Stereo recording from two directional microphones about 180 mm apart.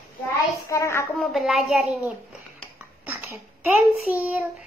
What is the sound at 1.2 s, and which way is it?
Speech, centre (ahead or behind).